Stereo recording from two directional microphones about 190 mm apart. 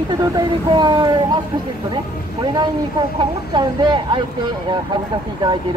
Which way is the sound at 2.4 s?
20° right (ahead or behind).